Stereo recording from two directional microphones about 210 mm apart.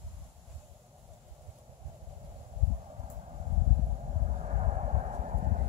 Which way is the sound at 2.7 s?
25° right (ahead or behind).